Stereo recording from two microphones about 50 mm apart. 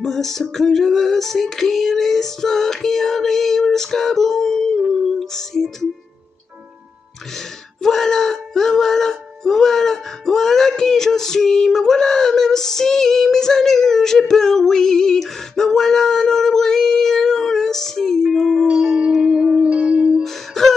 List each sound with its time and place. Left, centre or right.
0.0 s music: centre
7.3 s a sound: centre
19.2 s music: centre
20.2 s music: centre